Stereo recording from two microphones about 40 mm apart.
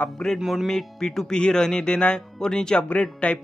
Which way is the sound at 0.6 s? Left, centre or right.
Centre.